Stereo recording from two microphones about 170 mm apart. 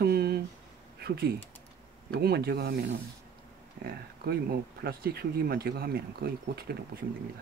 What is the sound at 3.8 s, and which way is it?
Speech, 70° right (ahead or behind).